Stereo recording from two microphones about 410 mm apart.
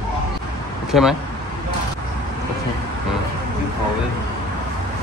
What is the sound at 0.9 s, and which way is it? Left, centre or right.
Speech, centre.